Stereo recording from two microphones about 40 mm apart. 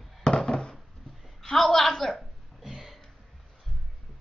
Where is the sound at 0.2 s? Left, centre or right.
Centre.